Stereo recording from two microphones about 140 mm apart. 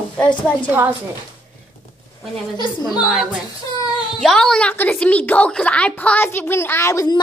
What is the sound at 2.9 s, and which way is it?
A woman's voice, 5° right (ahead or behind).